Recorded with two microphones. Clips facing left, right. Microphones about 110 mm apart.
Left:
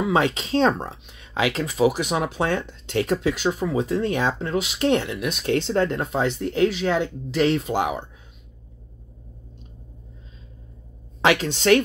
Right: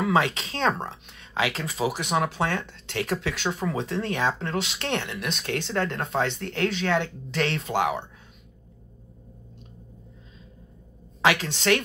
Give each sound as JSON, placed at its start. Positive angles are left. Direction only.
{"t": 0.0, "sound": "speech", "side_deg": 20}
{"t": 5.4, "sound": "speech", "side_deg": 25}
{"t": 11.1, "sound": "speech", "side_deg": 25}